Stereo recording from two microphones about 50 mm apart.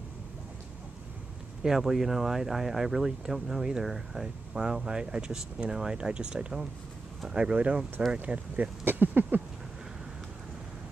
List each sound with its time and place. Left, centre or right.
1.6 s speech: centre
7.5 s speech: right